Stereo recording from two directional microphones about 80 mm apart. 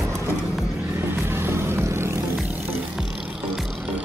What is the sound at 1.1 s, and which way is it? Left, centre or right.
Vehicle, right.